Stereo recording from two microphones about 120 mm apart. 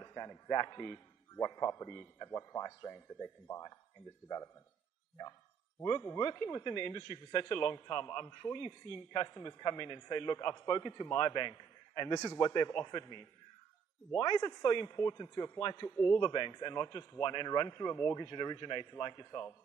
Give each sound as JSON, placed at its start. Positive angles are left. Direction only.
{"t": 0.0, "sound": "a man's voice", "side_deg": 25}
{"t": 6.4, "sound": "a man's voice", "side_deg": 35}
{"t": 11.1, "sound": "a man's voice", "side_deg": 40}
{"t": 14.9, "sound": "a man's voice", "side_deg": 25}
{"t": 16.2, "sound": "a man's voice", "side_deg": 35}
{"t": 17.6, "sound": "a man's voice", "side_deg": 25}